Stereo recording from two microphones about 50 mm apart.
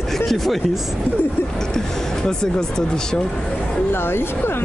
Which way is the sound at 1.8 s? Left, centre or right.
Centre.